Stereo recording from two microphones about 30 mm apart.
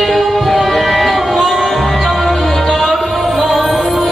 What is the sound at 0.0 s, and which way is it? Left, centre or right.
Music, centre.